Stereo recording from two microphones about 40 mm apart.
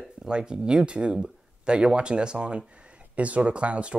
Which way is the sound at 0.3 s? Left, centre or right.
Right.